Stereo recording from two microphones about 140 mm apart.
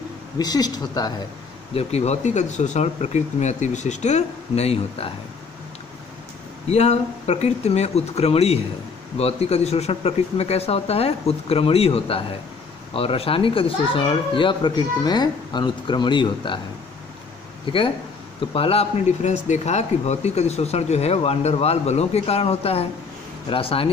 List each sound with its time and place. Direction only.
0.4 s speech: 30° left (ahead or behind)
1.7 s speech: 45° left (ahead or behind)
6.7 s speech: 50° left (ahead or behind); by 16.6 s 35° left (ahead or behind)
17.6 s speech: 40° left (ahead or behind)